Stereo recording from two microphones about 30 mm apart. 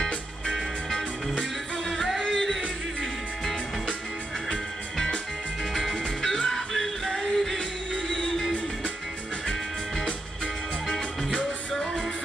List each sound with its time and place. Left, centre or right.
0.0 s music: centre
1.9 s music: centre
4.5 s music: centre
11.3 s music: centre